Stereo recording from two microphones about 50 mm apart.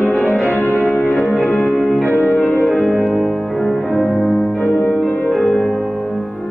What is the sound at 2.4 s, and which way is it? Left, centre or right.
Music, left.